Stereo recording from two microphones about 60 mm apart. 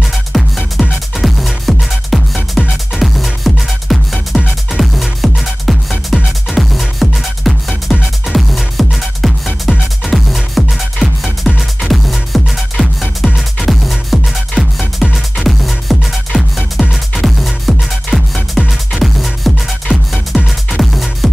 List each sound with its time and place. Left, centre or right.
0.3 s music: centre